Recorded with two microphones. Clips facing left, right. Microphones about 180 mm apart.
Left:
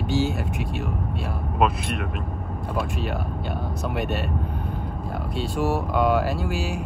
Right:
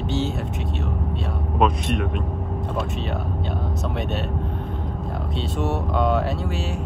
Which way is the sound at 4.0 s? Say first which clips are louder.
Left 2 dB; centre (ahead or behind).